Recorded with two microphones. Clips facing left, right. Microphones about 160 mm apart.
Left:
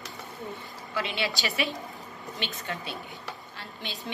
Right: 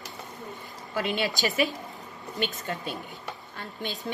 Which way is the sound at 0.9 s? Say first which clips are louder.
Right 3 dB; 45° right (ahead or behind).